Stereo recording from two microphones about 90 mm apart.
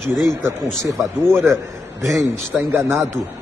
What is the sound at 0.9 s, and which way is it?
Speech, 30° right (ahead or behind).